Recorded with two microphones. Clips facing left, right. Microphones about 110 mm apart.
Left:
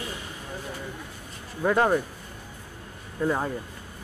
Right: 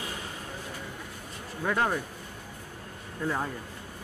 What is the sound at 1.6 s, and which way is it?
Speech, 30° left (ahead or behind).